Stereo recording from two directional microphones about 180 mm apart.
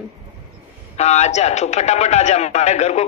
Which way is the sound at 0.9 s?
35° left (ahead or behind).